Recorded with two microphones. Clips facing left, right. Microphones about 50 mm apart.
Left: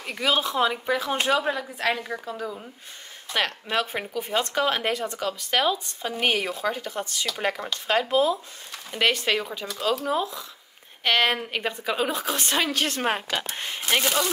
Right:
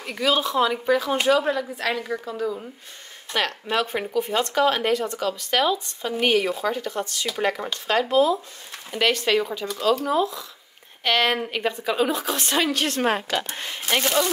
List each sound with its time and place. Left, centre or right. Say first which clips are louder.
0.0 s speech: right 2 dB; centre
1.4 s a woman's voice: right 3 dB; centre
1.8 s speech: even; left
2.0 s a woman's voice: right 4 dB; centre
7.3 s a woman's voice: right 4 dB; centre
7.8 s a woman's voice: right 2 dB; centre